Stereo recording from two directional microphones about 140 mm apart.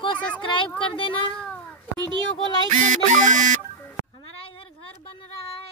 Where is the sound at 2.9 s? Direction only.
60° right (ahead or behind).